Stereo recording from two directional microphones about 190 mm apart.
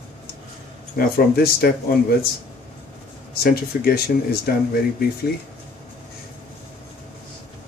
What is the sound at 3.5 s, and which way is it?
Speech, 55° left (ahead or behind).